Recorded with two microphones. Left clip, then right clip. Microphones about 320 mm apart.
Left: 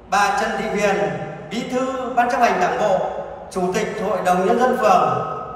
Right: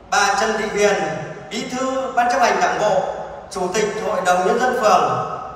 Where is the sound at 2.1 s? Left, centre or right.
Centre.